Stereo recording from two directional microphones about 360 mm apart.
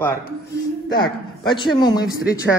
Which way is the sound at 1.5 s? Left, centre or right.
Centre.